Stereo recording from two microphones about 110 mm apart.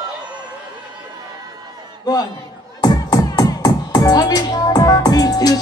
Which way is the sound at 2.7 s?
35° left (ahead or behind).